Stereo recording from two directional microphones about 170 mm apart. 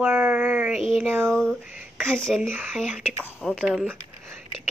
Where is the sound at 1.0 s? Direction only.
15° right (ahead or behind).